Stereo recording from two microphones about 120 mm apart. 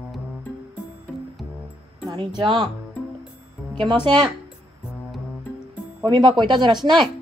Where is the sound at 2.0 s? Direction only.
40° right (ahead or behind).